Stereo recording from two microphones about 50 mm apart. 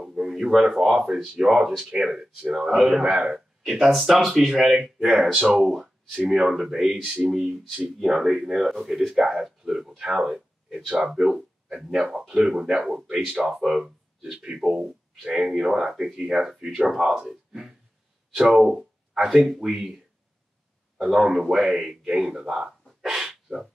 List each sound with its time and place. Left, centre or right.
0.0 s speech: centre
3.9 s speech: centre
7.4 s speech: centre
8.0 s speech: centre
18.3 s speech: centre
21.0 s speech: centre
23.1 s crow: centre